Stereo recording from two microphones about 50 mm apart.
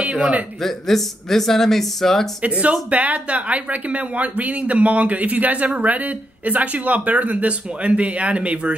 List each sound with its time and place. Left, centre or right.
0.6 s speech: centre
2.4 s speech: right